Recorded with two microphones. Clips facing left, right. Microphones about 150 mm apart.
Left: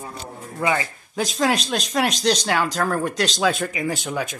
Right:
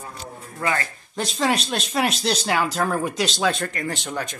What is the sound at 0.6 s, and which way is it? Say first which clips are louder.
Speech: left 3 dB; 15° left (ahead or behind).